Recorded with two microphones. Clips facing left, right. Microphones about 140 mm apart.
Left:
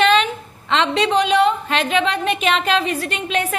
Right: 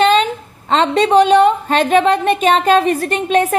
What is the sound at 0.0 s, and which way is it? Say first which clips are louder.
A woman's voice: right 3 dB; 35° right (ahead or behind).